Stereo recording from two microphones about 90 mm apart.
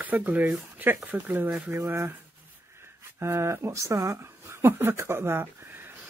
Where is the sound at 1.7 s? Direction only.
30° right (ahead or behind).